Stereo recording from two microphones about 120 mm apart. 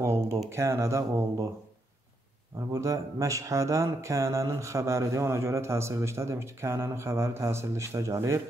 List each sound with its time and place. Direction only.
0.0 s speech: 20° right (ahead or behind)
2.7 s speech: 25° right (ahead or behind)